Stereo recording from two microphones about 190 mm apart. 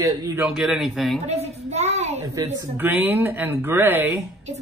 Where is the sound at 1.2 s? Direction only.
35° right (ahead or behind).